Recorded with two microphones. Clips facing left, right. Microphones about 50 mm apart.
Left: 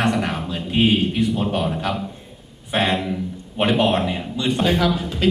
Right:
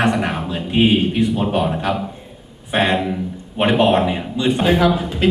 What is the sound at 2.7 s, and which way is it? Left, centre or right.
A man's voice, centre.